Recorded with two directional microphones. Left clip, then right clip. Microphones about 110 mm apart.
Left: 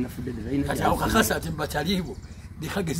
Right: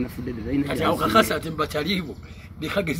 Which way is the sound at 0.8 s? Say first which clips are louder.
Right 4 dB; 40° left (ahead or behind).